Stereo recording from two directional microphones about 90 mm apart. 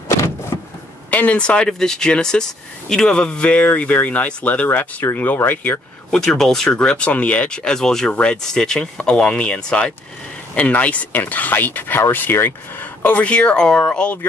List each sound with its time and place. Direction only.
0.5 s vehicle: 50° left (ahead or behind)
1.1 s speech: 15° left (ahead or behind)
6.0 s speech: 5° left (ahead or behind)